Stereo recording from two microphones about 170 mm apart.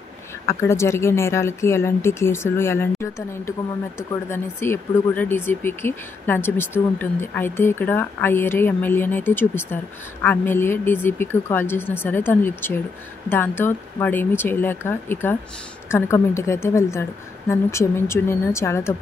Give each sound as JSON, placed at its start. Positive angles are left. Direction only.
{"t": 0.5, "sound": "speech", "side_deg": 15}